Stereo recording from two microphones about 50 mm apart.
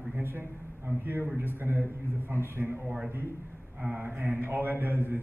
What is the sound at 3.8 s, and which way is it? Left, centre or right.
A man's voice, right.